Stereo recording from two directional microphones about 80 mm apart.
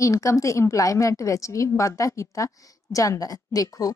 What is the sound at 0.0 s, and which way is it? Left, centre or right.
A woman's voice, left.